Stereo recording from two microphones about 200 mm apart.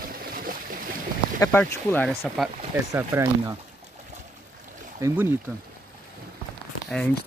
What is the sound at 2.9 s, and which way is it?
Speech, 15° right (ahead or behind).